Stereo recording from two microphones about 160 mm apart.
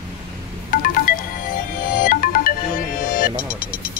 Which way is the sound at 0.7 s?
60° left (ahead or behind).